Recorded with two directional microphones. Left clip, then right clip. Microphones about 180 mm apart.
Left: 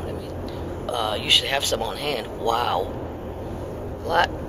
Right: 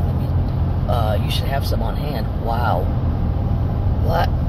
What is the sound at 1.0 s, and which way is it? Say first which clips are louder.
Speech: left 4 dB; 15° left (ahead or behind).